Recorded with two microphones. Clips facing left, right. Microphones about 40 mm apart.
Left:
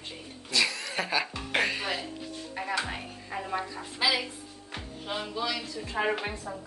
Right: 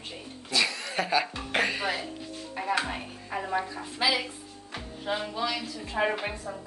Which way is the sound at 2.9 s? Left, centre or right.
Centre.